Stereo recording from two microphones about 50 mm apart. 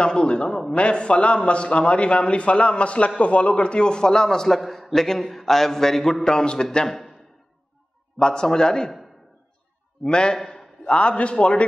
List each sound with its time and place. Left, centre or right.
0.0 s a man's voice: centre
8.2 s a man's voice: centre
10.0 s a man's voice: centre